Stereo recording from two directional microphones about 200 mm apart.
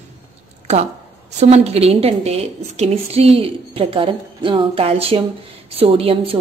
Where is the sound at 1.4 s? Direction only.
30° right (ahead or behind).